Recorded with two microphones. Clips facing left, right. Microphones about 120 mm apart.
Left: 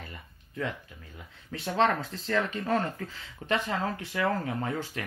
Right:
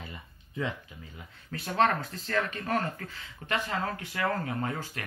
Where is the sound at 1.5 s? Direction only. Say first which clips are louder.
Even; 25° left (ahead or behind).